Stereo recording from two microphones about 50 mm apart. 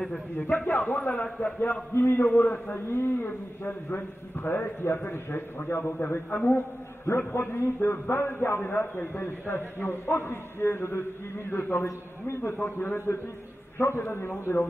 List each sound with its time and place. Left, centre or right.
0.7 s a man's voice: left
1.6 s a man's voice: left
2.9 s a man's voice: left
8.7 s a man's voice: left
14.0 s a man's voice: left